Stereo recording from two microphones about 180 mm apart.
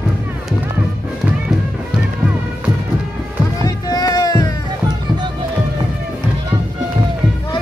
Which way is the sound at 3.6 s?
20° left (ahead or behind).